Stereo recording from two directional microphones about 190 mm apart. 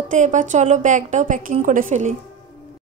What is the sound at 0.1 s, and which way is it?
A woman's voice, 40° right (ahead or behind).